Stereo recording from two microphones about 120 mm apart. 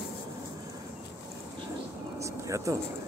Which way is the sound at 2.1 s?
25° right (ahead or behind).